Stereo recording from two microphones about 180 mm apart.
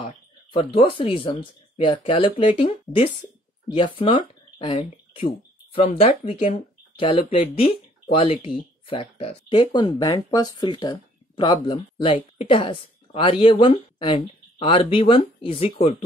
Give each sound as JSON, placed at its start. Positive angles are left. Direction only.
{"t": 0.7, "sound": "speech", "side_deg": 30}